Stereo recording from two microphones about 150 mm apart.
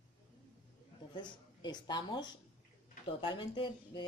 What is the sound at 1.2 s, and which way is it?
A woman's voice, 30° left (ahead or behind).